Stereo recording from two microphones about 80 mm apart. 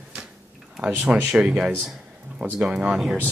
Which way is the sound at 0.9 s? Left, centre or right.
Right.